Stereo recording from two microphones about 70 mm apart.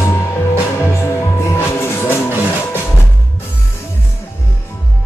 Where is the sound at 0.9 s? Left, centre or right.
Left.